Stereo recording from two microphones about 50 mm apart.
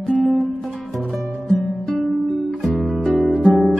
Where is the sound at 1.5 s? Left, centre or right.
Centre.